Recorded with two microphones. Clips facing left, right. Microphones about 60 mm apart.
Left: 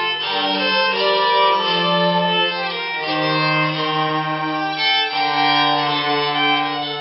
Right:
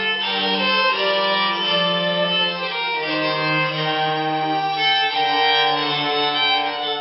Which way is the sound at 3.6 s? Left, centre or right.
Centre.